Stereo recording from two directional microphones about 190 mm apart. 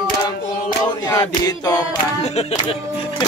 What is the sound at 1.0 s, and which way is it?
Music, 20° left (ahead or behind).